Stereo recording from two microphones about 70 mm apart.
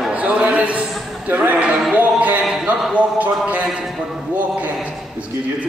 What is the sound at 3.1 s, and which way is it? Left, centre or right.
Speech, right.